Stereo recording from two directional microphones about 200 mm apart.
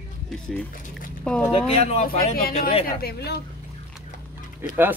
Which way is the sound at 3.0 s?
55° left (ahead or behind).